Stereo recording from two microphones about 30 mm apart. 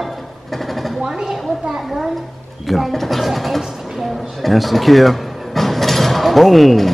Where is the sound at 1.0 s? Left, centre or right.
Right.